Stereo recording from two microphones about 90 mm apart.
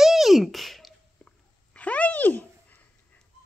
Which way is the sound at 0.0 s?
5° right (ahead or behind).